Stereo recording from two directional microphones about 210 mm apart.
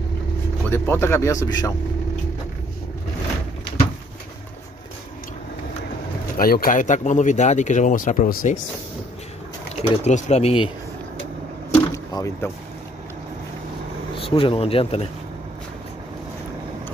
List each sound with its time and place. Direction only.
0.7 s speech: 10° left (ahead or behind)
6.3 s speech: 45° left (ahead or behind)
10.0 s speech: 35° left (ahead or behind)
11.7 s a sound: 15° left (ahead or behind)
14.1 s speech: 25° left (ahead or behind)